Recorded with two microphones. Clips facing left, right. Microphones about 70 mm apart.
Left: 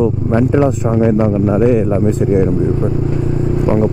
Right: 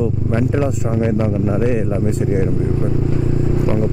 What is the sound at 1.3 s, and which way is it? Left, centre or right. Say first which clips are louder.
Speech: left 6 dB; left.